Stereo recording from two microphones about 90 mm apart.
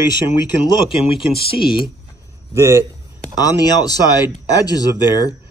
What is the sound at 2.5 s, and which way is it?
Speech, 30° right (ahead or behind).